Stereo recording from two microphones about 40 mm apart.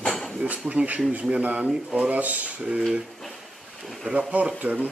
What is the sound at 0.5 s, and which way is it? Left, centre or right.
Speech, right.